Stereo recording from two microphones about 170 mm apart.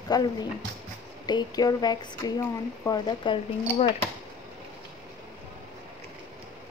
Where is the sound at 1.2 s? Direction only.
25° left (ahead or behind).